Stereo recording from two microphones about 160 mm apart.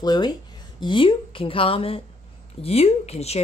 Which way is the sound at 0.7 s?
30° left (ahead or behind).